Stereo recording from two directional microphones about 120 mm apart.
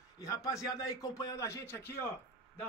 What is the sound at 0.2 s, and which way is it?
A man's voice, 30° left (ahead or behind).